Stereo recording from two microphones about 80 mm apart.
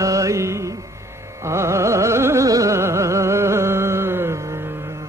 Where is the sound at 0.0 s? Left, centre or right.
Right.